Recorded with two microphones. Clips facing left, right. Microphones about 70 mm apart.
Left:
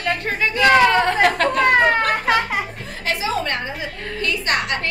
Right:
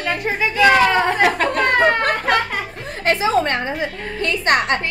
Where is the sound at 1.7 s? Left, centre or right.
Centre.